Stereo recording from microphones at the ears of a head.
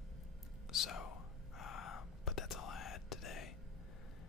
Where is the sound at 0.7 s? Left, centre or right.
Left.